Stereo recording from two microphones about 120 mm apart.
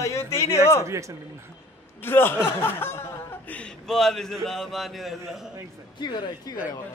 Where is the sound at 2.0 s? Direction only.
20° left (ahead or behind); by 5.5 s centre (ahead or behind).